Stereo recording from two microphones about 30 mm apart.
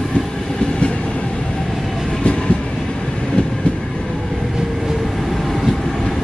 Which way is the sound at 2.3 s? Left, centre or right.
Left.